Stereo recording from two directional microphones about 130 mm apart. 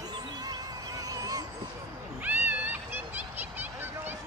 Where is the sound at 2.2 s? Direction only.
15° right (ahead or behind).